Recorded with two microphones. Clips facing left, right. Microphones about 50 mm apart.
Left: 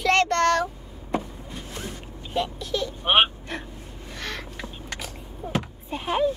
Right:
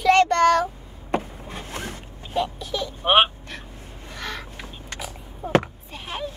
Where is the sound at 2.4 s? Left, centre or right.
Centre.